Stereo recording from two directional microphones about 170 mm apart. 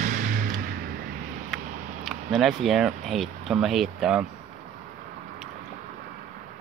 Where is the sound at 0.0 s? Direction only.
50° right (ahead or behind).